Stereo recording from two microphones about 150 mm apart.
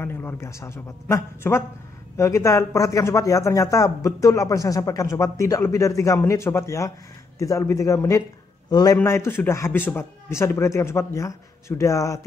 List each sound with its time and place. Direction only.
0.0 s a man's voice: 15° left (ahead or behind)